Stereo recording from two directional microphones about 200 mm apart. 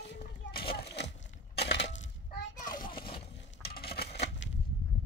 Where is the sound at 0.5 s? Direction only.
50° left (ahead or behind).